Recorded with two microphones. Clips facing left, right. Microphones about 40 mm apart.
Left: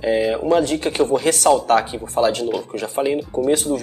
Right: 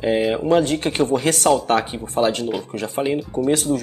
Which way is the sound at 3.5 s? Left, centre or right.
Right.